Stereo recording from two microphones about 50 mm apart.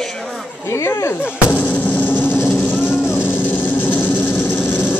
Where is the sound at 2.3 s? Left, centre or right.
Left.